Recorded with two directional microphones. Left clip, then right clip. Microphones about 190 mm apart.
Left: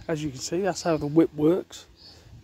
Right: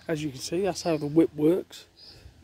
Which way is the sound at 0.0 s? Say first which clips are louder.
Left 1 dB; centre (ahead or behind).